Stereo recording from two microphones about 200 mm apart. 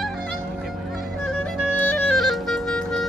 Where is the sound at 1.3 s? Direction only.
5° right (ahead or behind).